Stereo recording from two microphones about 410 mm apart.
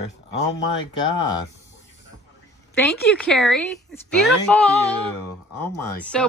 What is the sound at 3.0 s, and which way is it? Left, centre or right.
Speech, centre.